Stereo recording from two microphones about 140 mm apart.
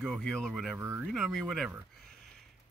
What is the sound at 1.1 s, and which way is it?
Speech, centre (ahead or behind).